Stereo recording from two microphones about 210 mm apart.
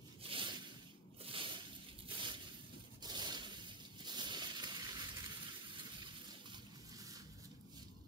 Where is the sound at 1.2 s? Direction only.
25° right (ahead or behind).